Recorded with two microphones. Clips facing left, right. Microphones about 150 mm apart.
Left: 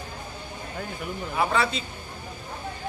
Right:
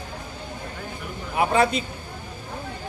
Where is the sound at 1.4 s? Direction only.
50° right (ahead or behind).